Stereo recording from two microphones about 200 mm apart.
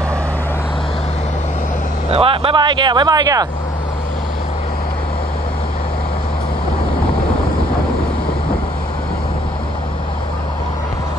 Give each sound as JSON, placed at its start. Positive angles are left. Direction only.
{"t": 2.0, "sound": "speech", "side_deg": -30}